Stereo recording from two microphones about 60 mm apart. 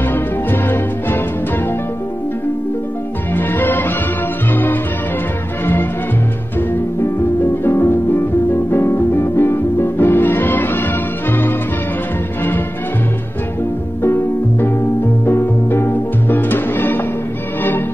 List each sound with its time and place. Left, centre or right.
0.1 s music: left
3.3 s music: left
7.6 s music: left
14.0 s music: left